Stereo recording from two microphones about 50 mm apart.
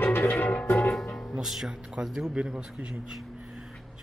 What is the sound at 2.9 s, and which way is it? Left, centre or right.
Speech, centre.